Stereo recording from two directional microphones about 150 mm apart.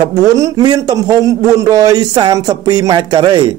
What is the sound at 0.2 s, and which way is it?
A man's voice, 25° right (ahead or behind).